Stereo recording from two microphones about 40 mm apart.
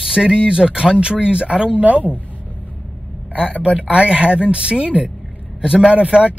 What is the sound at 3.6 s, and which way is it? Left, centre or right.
Speech, right.